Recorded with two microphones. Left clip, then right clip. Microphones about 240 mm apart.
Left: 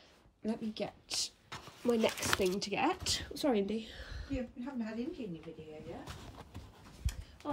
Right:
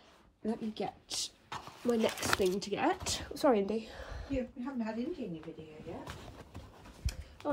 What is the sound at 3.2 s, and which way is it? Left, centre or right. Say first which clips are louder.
A woman's voice: right 6 dB; centre.